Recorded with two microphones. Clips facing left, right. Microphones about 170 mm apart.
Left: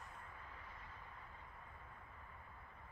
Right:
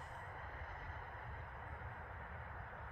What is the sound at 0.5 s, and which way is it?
Vehicle, 50° right (ahead or behind).